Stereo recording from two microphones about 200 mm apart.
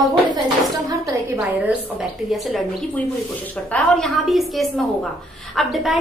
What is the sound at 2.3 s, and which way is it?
A woman's voice, centre (ahead or behind).